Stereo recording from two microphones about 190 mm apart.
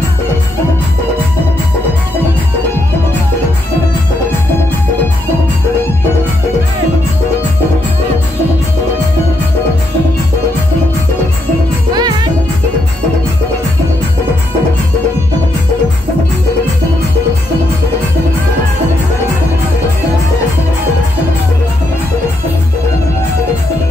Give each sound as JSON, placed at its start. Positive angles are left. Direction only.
{"t": 11.9, "sound": "music", "side_deg": -20}